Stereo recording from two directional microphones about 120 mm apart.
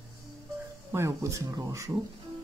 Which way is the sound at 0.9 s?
25° right (ahead or behind).